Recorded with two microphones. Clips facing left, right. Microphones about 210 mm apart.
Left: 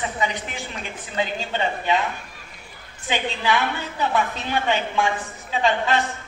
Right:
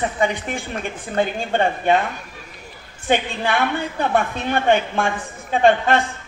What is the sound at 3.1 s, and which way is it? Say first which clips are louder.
A woman's voice: right 3 dB; 55° right (ahead or behind).